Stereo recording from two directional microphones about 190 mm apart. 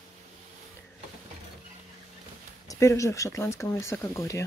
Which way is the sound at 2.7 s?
15° left (ahead or behind).